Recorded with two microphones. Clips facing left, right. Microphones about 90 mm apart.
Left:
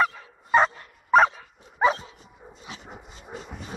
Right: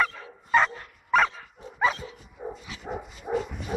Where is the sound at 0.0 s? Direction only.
15° left (ahead or behind).